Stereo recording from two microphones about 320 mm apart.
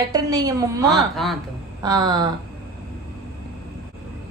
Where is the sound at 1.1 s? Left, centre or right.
Centre.